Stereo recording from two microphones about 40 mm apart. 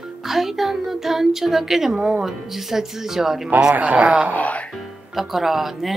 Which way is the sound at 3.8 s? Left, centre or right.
Right.